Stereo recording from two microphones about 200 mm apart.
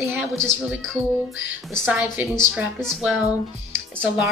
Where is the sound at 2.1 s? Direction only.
5° right (ahead or behind).